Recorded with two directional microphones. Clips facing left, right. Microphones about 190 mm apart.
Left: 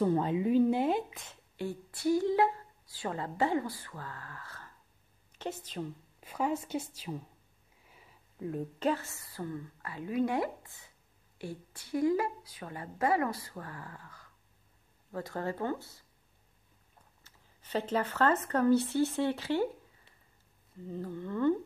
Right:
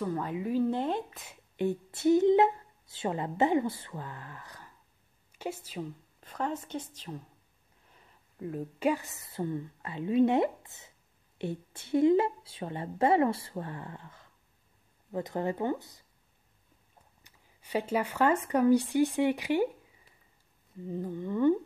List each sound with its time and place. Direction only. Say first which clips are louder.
0.0 s speech: left 4 dB; 25° left (ahead or behind); by 1.0 s 10° left (ahead or behind)
1.1 s a woman's voice: even; 10° right (ahead or behind)
1.6 s a woman's voice: right 6 dB; 20° right (ahead or behind)
6.2 s a woman's voice: left 2 dB; 10° left (ahead or behind); by 16.0 s 15° right (ahead or behind)
17.2 s speech: right 1 dB; 10° right (ahead or behind)
20.8 s speech: right 3 dB; 15° right (ahead or behind)